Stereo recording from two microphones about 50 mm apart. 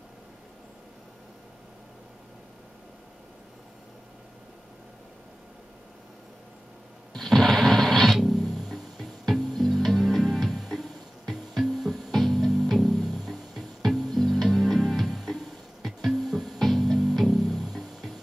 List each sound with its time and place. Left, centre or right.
7.2 s music: centre